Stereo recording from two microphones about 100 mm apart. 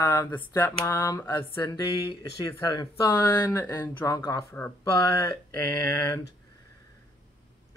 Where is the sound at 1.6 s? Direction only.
45° left (ahead or behind); by 3.8 s 25° left (ahead or behind).